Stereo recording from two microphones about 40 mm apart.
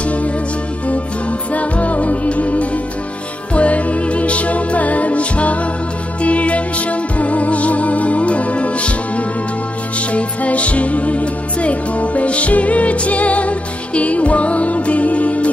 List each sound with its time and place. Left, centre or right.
1.5 s music: left